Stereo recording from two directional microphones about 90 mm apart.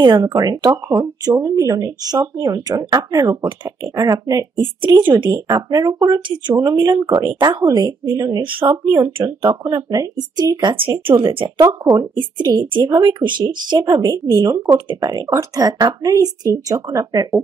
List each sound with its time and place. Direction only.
0.0 s speech: 45° right (ahead or behind)
5.1 s speech: 55° right (ahead or behind)
8.4 s speech: 70° right (ahead or behind)
8.6 s speech: 40° right (ahead or behind)
11.1 s speech: 75° right (ahead or behind)
11.6 s speech: 40° right (ahead or behind)
12.2 s speech: 55° right (ahead or behind)